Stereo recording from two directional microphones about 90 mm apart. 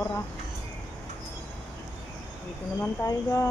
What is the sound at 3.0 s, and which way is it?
Speech, 35° left (ahead or behind).